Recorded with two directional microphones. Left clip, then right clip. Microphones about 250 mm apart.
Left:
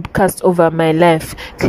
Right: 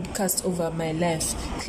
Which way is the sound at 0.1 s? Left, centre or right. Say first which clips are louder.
Left 15 dB; left.